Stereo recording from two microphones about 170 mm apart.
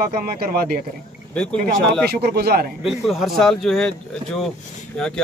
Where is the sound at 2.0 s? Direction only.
70° right (ahead or behind).